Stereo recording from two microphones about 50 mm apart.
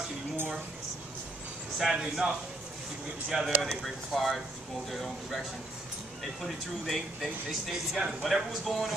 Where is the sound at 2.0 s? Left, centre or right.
Centre.